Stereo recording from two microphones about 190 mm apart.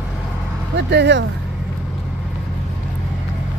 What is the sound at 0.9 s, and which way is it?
Speech, 65° right (ahead or behind).